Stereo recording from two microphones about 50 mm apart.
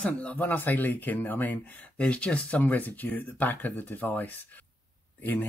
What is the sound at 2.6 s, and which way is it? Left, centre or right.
Speech, left.